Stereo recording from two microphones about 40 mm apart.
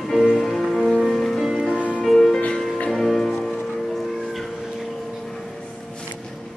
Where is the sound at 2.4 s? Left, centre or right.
Left.